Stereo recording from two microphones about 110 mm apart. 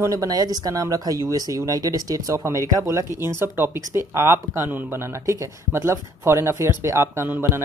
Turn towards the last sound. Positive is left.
turn(degrees=-20)  # may be behind; listen again after turning